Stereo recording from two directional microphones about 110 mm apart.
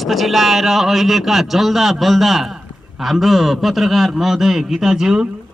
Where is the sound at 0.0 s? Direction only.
Centre (ahead or behind).